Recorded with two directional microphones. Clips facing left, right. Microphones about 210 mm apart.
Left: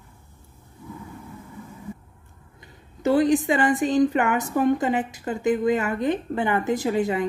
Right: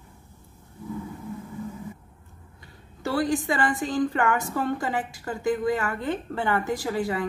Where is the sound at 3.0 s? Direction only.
20° left (ahead or behind).